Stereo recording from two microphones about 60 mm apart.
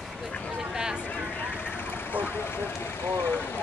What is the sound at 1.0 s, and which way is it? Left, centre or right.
Vehicle, left.